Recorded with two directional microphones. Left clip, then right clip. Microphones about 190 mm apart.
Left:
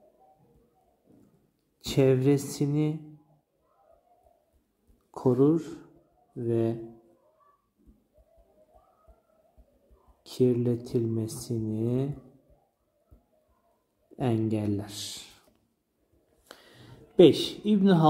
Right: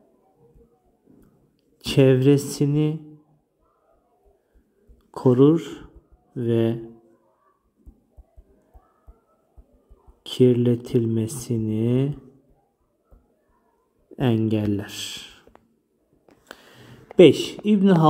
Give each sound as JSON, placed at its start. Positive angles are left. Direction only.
{"t": 1.8, "sound": "speech", "side_deg": -20}
{"t": 5.1, "sound": "speech", "side_deg": -20}
{"t": 10.2, "sound": "speech", "side_deg": -25}
{"t": 14.1, "sound": "speech", "side_deg": -20}
{"t": 16.4, "sound": "a sound", "side_deg": -15}